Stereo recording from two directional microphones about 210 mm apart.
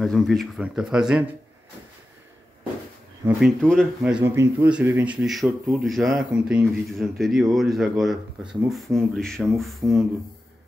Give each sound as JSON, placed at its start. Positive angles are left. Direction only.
{"t": 0.0, "sound": "speech", "side_deg": 0}
{"t": 3.3, "sound": "speech", "side_deg": 0}